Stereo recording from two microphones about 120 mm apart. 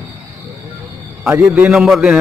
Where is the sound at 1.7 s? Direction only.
5° right (ahead or behind).